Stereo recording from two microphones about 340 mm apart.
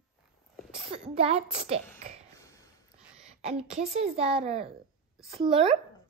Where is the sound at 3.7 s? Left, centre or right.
Centre.